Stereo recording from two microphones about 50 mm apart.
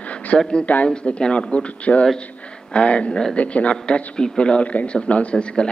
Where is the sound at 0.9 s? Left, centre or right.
Centre.